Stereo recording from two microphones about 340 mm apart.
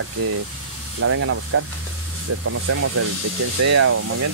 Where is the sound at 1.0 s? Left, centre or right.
Right.